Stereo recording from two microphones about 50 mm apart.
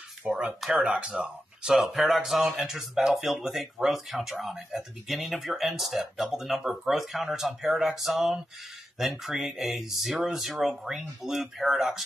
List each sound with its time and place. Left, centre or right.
0.2 s speech: right
0.6 s speech: centre
0.9 s speech: right
1.7 s speech: centre